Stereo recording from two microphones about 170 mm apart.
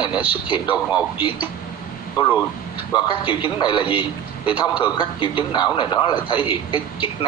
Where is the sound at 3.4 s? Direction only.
30° left (ahead or behind).